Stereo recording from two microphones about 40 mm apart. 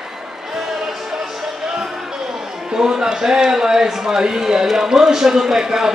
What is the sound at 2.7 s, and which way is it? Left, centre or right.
Speech, centre.